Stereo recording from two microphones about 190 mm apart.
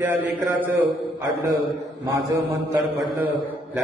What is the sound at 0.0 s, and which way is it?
Speech, 10° right (ahead or behind).